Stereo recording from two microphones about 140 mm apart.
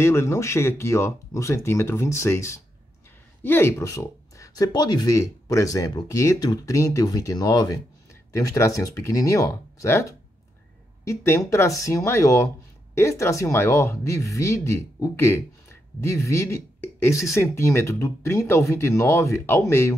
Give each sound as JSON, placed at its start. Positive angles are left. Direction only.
{"t": 0.0, "sound": "speech", "side_deg": 20}